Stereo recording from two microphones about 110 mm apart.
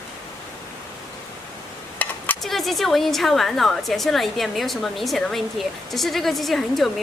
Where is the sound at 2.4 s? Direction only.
Centre (ahead or behind).